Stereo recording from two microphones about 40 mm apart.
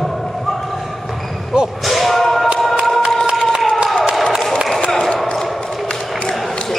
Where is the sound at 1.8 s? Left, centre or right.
Centre.